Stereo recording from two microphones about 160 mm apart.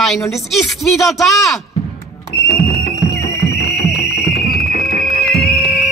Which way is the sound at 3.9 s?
85° left.